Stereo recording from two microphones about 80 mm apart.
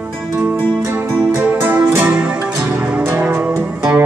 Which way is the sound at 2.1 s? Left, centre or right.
Centre.